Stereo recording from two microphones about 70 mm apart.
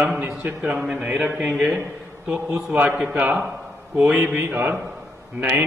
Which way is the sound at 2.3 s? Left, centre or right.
Right.